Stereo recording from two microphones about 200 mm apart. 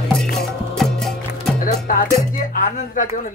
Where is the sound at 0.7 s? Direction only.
Centre (ahead or behind).